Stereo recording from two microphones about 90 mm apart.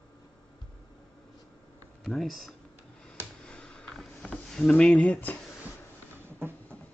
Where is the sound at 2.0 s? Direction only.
Centre (ahead or behind).